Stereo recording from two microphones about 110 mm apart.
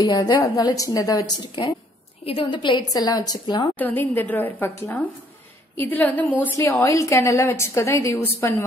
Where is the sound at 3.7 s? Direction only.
15° left (ahead or behind).